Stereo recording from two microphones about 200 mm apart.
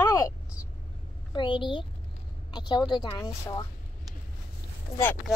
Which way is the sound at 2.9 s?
20° left (ahead or behind).